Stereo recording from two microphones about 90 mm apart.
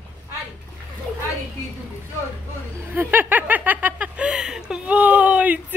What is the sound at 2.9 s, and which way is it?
Speech, 20° right (ahead or behind).